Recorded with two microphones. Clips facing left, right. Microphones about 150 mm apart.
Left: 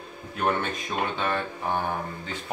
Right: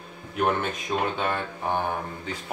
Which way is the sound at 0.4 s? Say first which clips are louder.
Right 1 dB; 10° right (ahead or behind).